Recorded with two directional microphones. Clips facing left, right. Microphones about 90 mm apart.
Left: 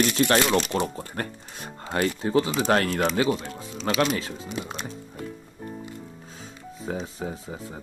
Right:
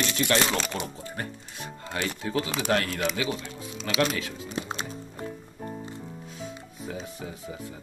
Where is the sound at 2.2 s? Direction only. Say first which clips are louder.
Left 6 dB; 30° left (ahead or behind).